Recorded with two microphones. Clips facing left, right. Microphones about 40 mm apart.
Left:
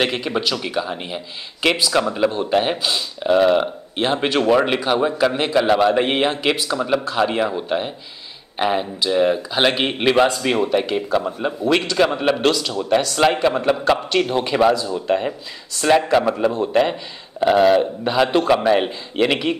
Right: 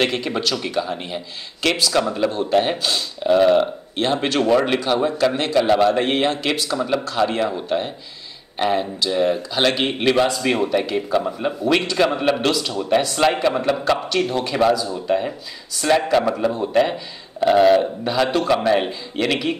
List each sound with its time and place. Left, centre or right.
0.0 s a man's voice: centre
3.9 s a man's voice: centre
10.4 s a man's voice: centre
13.2 s a man's voice: centre
14.2 s a man's voice: left